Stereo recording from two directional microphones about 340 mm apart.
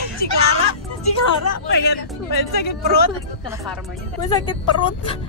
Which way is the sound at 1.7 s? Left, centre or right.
Left.